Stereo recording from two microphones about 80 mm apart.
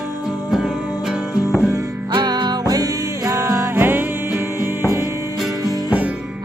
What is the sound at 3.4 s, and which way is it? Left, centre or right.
Music, right.